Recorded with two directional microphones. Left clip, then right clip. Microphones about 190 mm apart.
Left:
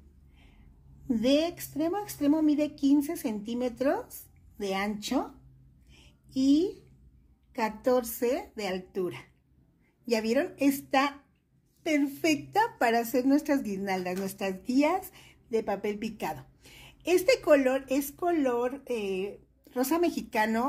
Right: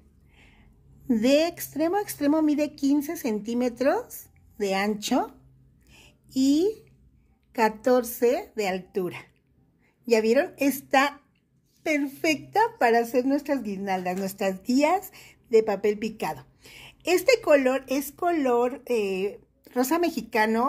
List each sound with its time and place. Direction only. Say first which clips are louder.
1.0 s a woman's voice: right 5 dB; 30° right (ahead or behind)
5.9 s a sound: right 5 dB; 35° right (ahead or behind)
7.5 s a woman's voice: right 5 dB; 30° right (ahead or behind)